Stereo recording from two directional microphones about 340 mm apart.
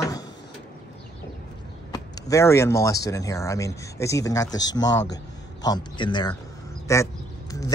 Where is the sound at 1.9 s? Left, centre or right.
Centre.